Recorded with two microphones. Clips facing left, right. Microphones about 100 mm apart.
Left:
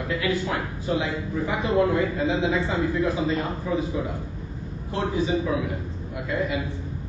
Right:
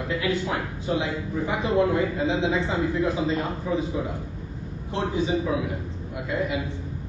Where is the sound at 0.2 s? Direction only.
25° right (ahead or behind).